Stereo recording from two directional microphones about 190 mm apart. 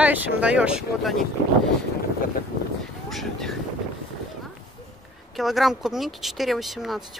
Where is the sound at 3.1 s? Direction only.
Centre (ahead or behind).